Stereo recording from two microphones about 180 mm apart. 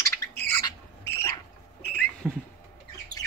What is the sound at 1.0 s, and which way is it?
Squawk, 10° left (ahead or behind).